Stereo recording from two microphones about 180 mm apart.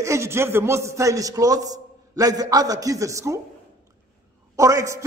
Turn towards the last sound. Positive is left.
turn(degrees=-15)  # may be behind; listen again after turning